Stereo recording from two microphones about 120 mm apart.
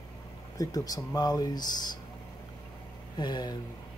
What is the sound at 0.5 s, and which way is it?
Speech, 30° left (ahead or behind).